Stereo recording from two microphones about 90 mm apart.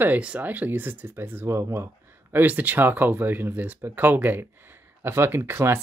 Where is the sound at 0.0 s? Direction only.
15° right (ahead or behind).